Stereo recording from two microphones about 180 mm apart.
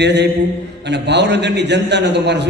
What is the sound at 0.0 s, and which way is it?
A man's voice, 70° right (ahead or behind).